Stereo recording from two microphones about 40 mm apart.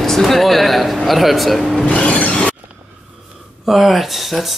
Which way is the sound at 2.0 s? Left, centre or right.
Left.